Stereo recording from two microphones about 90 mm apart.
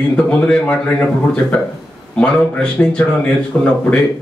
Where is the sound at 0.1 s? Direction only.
10° left (ahead or behind).